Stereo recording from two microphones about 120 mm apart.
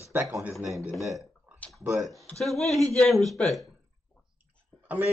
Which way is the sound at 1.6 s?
10° left (ahead or behind).